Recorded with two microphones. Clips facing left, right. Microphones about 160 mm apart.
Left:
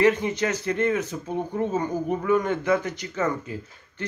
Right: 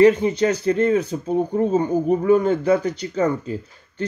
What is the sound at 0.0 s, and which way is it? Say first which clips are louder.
Speech: right 6 dB; 30° right (ahead or behind).